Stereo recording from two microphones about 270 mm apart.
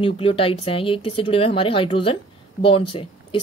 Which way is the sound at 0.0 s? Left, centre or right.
Centre.